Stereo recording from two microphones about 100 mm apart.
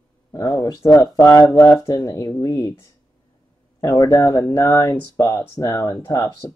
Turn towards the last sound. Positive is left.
turn(degrees=35)  # may be behind; listen again after turning